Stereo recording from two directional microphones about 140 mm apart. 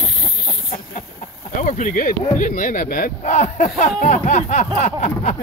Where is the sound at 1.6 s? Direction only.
65° left (ahead or behind); by 3.1 s 85° left.